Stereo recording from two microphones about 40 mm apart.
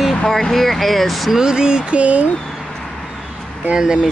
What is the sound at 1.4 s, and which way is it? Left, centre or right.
Mantra, centre.